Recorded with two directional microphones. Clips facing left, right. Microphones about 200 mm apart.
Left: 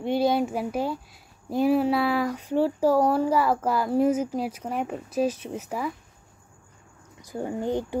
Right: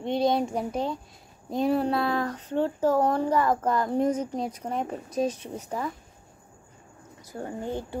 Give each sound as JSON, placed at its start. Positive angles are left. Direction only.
{"t": 0.0, "sound": "speech", "side_deg": 5}
{"t": 7.2, "sound": "speech", "side_deg": 15}